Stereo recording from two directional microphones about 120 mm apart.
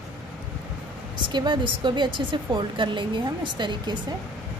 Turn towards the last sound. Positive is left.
turn(degrees=-40)  # may be behind; listen again after turning